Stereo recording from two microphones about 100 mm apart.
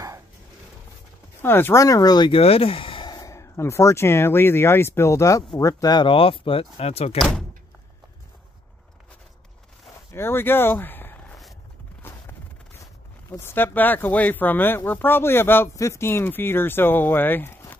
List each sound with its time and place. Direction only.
1.4 s speech: 25° left (ahead or behind); by 2.3 s 45° left (ahead or behind)
2.3 s a sound: 75° left (ahead or behind); by 3.3 s 50° left (ahead or behind)
3.3 s speech: 30° left (ahead or behind)
6.0 s speech: 60° left (ahead or behind); by 7.2 s 90° left
7.2 s speech: 5° left (ahead or behind)
10.1 s speech: 25° left (ahead or behind)
12.0 s a sound: 25° left (ahead or behind)
13.3 s speech: 20° left (ahead or behind)